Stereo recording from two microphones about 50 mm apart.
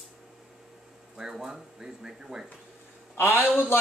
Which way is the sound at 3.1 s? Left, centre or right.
Left.